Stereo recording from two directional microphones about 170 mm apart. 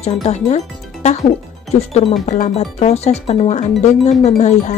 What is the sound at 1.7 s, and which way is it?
Speech, 35° left (ahead or behind).